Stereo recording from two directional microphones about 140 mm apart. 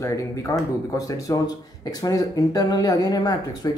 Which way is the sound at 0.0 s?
20° left (ahead or behind).